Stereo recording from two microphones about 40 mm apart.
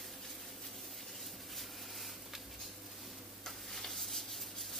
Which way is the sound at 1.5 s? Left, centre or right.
Centre.